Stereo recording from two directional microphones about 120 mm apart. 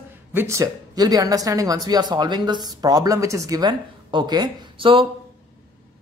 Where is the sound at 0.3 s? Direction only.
20° right (ahead or behind); by 5.0 s 45° right (ahead or behind).